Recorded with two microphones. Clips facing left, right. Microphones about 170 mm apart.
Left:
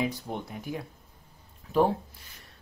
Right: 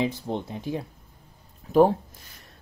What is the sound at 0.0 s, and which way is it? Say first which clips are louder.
Speech: right 4 dB; 25° right (ahead or behind).